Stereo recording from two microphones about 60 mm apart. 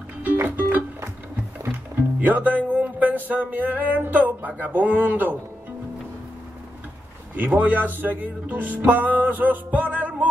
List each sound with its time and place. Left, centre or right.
0.2 s music: right
1.6 s speech: right
7.3 s speech: right